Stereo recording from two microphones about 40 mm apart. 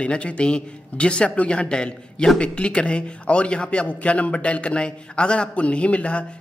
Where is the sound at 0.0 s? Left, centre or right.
Left.